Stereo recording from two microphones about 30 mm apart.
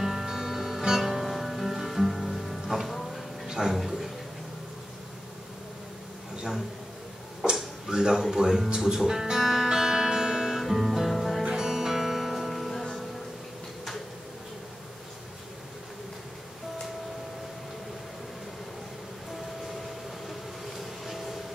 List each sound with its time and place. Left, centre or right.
0.0 s music: centre
3.0 s a sound: centre
3.6 s speech: right
7.5 s a sound: centre
8.6 s speech: right
9.4 s music: centre
9.7 s music: centre
11.4 s music: right; by 12.8 s centre
21.0 s vehicle: centre